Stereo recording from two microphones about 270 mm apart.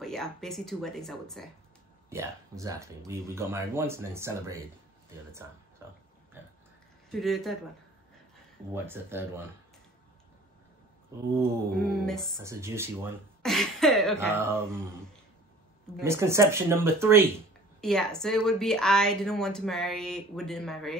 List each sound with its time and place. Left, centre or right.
0.0 s a woman's voice: centre
2.0 s speech: centre
7.1 s a woman's voice: centre
8.7 s speech: centre
11.9 s a woman's voice: centre
12.4 s speech: centre
13.4 s a sound: centre
14.1 s speech: centre
16.0 s speech: centre
17.7 s a woman's voice: centre